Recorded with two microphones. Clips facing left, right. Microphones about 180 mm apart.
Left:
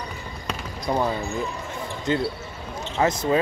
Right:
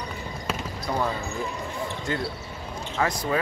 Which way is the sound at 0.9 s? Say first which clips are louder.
Left 4 dB; 20° left (ahead or behind).